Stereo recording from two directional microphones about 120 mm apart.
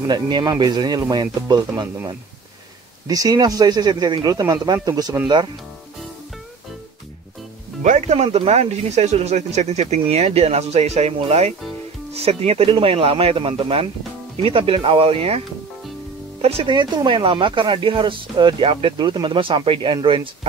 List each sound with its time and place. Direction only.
0.0 s speech: 35° right (ahead or behind)
3.1 s speech: 30° right (ahead or behind)
7.8 s speech: 80° right; by 16.7 s 55° right (ahead or behind)
16.7 s speech: 40° right (ahead or behind)